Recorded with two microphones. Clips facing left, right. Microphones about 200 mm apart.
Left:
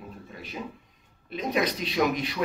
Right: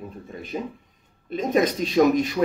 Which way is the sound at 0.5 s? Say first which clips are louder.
Right 7 dB; 40° right (ahead or behind).